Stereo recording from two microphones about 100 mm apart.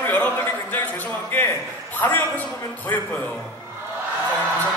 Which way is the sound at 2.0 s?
20° left (ahead or behind).